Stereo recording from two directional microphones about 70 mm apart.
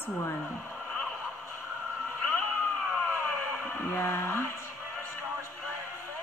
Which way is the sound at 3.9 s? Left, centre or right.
Left.